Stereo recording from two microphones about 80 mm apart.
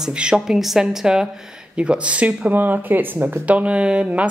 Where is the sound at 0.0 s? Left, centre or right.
Centre.